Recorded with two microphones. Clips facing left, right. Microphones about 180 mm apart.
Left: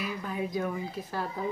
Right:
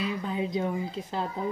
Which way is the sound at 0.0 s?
25° right (ahead or behind).